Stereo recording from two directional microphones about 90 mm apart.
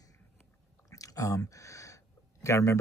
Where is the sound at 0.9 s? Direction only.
40° left (ahead or behind).